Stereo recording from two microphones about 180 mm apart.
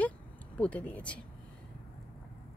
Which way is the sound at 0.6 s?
10° left (ahead or behind).